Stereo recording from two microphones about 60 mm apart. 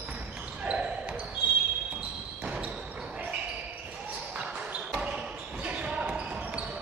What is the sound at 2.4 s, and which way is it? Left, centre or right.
Basketball bounce, right.